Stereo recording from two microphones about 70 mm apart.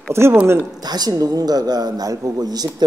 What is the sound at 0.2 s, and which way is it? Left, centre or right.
Speech, right.